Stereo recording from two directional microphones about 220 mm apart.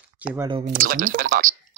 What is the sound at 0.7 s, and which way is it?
Speech, 40° right (ahead or behind).